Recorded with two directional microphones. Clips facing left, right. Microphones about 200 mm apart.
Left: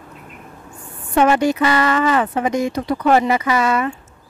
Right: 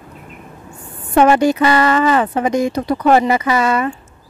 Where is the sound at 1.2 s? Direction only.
35° right (ahead or behind).